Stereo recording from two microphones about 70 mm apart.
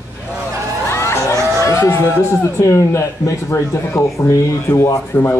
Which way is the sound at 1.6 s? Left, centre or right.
Left.